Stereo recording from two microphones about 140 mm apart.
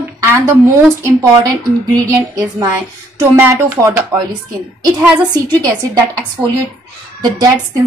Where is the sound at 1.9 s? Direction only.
30° right (ahead or behind).